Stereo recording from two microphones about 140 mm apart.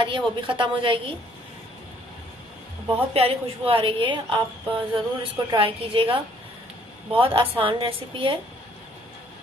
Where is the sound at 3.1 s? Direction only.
45° right (ahead or behind).